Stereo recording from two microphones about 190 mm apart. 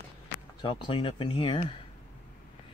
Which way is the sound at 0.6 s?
25° left (ahead or behind).